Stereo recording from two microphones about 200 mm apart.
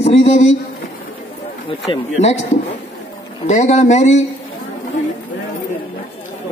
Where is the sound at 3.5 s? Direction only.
35° left (ahead or behind).